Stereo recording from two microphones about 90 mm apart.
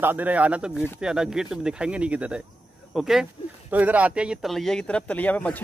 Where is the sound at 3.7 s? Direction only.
20° right (ahead or behind).